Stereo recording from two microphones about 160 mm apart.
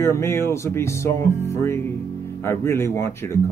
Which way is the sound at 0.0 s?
15° left (ahead or behind).